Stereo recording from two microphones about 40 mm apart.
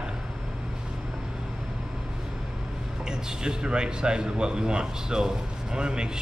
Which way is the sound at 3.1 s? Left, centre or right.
Centre.